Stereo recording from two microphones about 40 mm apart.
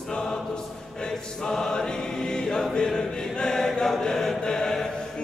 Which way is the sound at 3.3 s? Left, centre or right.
Centre.